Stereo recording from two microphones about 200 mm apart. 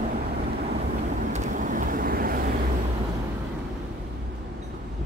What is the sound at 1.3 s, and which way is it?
Vehicle, 40° right (ahead or behind).